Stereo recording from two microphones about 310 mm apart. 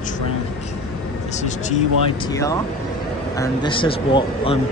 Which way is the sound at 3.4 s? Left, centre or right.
Centre.